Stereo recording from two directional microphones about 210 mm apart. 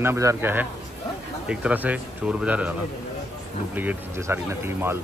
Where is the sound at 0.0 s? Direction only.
15° right (ahead or behind).